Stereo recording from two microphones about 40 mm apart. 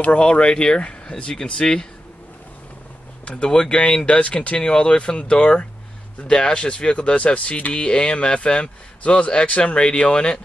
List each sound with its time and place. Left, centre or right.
0.2 s speech: left
1.3 s speech: centre
3.3 s speech: left